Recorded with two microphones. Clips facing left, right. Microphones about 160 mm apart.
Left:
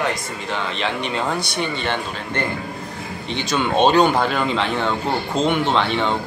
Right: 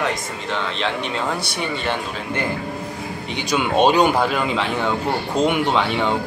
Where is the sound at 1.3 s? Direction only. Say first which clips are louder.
Left 1 dB; 5° right (ahead or behind).